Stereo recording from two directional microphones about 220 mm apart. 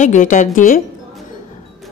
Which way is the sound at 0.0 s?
35° left (ahead or behind).